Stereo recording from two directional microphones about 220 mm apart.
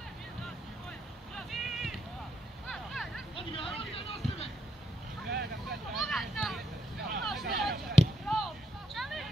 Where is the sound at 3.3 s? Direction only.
25° left (ahead or behind).